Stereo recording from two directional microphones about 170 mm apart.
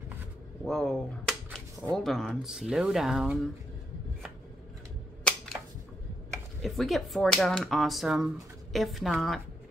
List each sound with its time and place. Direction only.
0.7 s speech: 5° left (ahead or behind)
5.2 s a sound: 5° left (ahead or behind)
6.6 s speech: centre (ahead or behind)